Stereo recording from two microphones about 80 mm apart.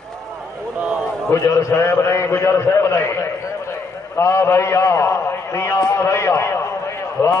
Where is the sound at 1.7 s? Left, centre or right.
Left.